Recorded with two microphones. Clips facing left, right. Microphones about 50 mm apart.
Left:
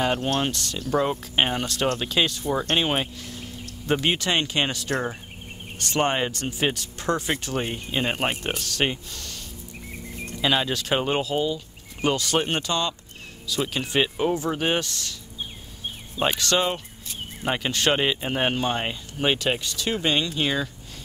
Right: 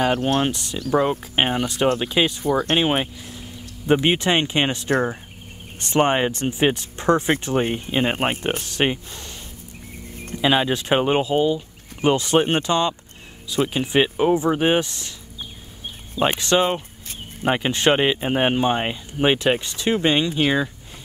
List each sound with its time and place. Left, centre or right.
0.0 s speech: centre
2.4 s speech: right
2.7 s speech: centre
10.4 s speech: centre
16.3 s speech: right